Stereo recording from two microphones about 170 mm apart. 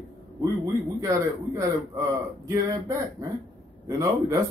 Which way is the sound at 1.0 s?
20° right (ahead or behind).